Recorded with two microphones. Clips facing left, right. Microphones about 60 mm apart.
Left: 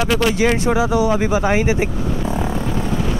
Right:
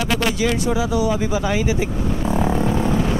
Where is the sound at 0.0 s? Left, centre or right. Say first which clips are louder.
Left 4 dB; left.